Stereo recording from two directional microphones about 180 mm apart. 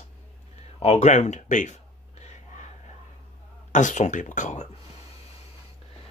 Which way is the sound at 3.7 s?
45° left (ahead or behind).